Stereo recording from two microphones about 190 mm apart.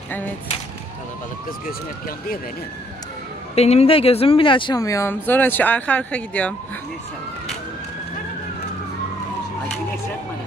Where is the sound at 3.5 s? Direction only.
35° left (ahead or behind); by 6.8 s 5° left (ahead or behind).